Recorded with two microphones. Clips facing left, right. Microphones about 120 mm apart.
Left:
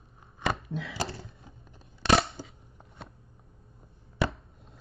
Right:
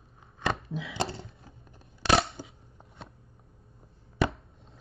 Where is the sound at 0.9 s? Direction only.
25° right (ahead or behind).